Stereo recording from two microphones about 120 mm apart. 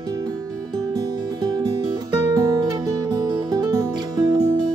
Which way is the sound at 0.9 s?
35° right (ahead or behind).